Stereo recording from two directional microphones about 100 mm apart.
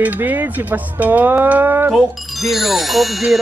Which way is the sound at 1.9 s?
Centre (ahead or behind).